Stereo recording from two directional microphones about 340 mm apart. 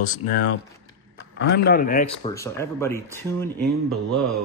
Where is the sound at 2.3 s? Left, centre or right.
Centre.